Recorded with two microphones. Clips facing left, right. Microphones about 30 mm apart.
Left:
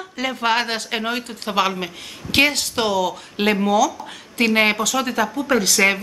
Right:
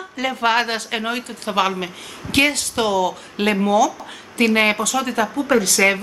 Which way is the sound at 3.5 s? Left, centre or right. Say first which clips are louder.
Right 2 dB; centre.